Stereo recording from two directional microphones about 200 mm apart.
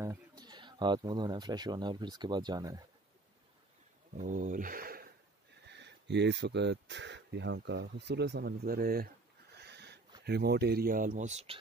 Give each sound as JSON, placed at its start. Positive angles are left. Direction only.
{"t": 0.0, "sound": "speech", "side_deg": -20}
{"t": 4.2, "sound": "speech", "side_deg": -40}
{"t": 5.7, "sound": "speech", "side_deg": -60}
{"t": 9.6, "sound": "a sound", "side_deg": -55}
{"t": 10.2, "sound": "speech", "side_deg": -55}